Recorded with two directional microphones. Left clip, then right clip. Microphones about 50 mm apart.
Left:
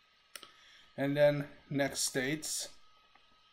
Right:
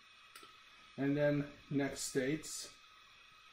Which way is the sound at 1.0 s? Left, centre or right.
Left.